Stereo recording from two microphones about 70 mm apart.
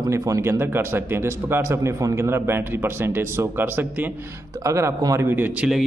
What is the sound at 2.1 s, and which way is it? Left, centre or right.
A man's voice, right.